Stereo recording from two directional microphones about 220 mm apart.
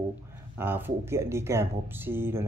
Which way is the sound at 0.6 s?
10° right (ahead or behind).